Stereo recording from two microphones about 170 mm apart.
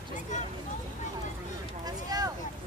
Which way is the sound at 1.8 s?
20° right (ahead or behind).